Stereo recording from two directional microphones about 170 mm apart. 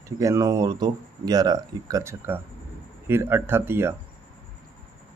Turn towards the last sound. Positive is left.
turn(degrees=-15)  # may be behind; listen again after turning